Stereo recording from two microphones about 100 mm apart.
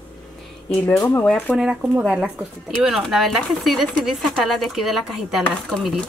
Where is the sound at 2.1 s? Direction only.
10° right (ahead or behind).